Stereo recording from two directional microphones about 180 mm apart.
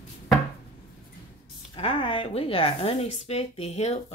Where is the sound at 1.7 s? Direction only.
30° left (ahead or behind).